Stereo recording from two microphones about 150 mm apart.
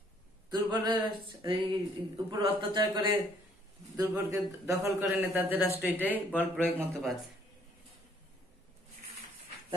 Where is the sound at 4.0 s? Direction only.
20° right (ahead or behind).